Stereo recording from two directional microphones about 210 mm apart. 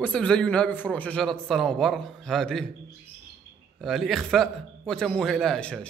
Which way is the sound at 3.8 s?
Centre (ahead or behind).